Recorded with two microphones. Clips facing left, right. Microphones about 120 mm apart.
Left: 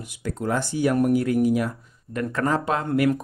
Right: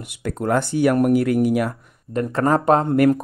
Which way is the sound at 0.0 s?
60° right (ahead or behind).